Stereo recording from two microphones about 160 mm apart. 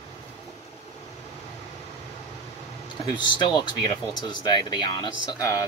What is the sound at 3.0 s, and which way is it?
Speech, 30° left (ahead or behind).